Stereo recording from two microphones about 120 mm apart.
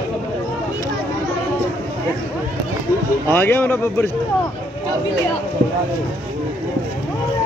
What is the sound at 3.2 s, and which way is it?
Speech, 15° left (ahead or behind).